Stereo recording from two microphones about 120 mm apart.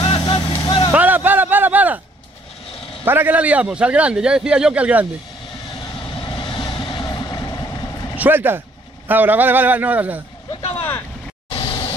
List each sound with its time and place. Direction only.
0.2 s vehicle: 40° left (ahead or behind)
0.9 s a sound: 15° right (ahead or behind)
3.1 s a man's voice: 15° right (ahead or behind)
6.2 s vehicle: 45° left (ahead or behind)
8.2 s a man's voice: 15° right (ahead or behind)
11.5 s a sound: 45° left (ahead or behind)